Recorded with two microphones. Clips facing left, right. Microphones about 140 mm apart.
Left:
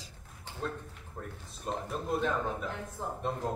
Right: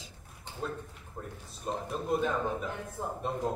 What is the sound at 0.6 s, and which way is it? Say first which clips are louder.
Speech: even; 5° right (ahead or behind).